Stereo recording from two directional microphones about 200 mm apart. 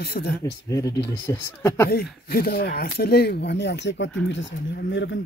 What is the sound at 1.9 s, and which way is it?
Speech, 50° left (ahead or behind).